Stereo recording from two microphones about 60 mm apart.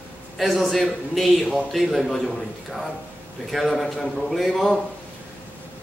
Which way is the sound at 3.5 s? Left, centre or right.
Centre.